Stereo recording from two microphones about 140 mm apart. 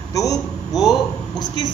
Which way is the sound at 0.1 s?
25° left (ahead or behind).